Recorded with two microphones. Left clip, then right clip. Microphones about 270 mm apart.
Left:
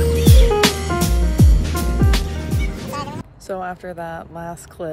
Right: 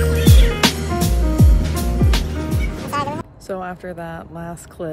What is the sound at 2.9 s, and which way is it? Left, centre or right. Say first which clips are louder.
Speech: right 9 dB; centre.